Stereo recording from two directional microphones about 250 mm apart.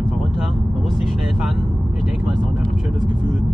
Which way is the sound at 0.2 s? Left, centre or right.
Centre.